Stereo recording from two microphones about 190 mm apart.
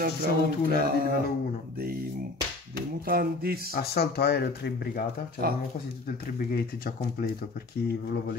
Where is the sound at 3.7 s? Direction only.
55° left (ahead or behind).